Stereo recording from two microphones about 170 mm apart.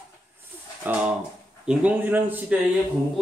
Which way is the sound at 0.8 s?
10° right (ahead or behind).